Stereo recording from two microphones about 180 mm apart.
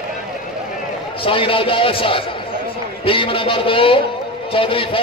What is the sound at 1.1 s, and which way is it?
A man's voice, 30° left (ahead or behind).